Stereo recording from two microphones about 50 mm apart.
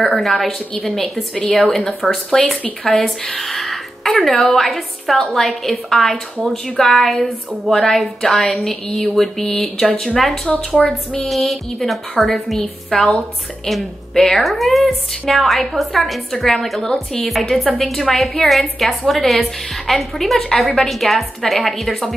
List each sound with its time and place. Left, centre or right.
0.0 s a woman's voice: centre
3.3 s music: centre
4.2 s a woman's voice: centre
9.5 s speech: centre
11.2 s a woman's voice: centre
12.9 s speech: centre
14.1 s a woman's voice: centre